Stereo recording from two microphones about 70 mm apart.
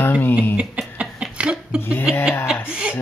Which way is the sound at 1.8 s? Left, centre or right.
Left.